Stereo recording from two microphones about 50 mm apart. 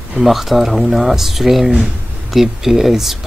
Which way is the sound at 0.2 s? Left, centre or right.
Centre.